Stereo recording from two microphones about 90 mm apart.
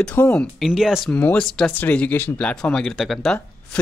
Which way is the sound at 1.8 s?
15° left (ahead or behind).